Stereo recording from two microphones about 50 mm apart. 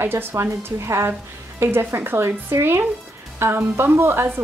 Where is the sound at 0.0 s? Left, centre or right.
Right.